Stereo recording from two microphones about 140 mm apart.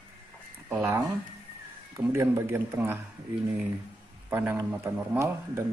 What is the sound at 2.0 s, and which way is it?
A man's voice, 20° right (ahead or behind).